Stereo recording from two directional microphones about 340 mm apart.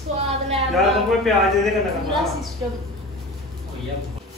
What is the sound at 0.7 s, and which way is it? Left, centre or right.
Speech, centre.